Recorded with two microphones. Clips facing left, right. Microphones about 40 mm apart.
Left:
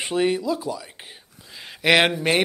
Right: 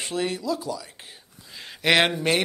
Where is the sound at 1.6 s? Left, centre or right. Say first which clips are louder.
Left 2 dB; centre.